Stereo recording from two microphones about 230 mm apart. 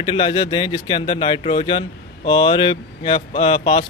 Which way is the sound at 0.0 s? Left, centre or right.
Left.